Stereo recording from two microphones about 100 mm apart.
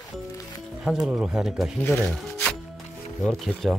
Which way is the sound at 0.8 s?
5° right (ahead or behind).